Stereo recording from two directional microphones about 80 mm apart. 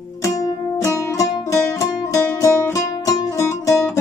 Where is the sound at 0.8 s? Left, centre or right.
Left.